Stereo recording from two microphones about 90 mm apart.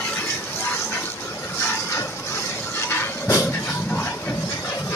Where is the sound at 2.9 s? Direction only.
30° left (ahead or behind).